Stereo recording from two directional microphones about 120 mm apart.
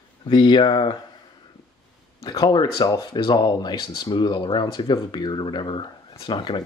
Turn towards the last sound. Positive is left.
turn(degrees=40)  # may be behind; listen again after turning